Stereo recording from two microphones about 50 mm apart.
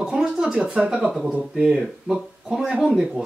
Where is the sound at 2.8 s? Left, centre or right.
Centre.